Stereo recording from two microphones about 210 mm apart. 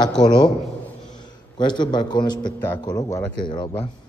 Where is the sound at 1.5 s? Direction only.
20° left (ahead or behind).